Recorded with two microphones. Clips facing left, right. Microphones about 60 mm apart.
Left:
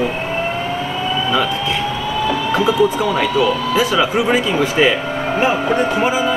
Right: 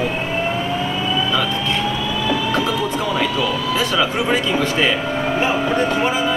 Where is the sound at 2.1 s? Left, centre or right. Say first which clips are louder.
Left 4 dB; left.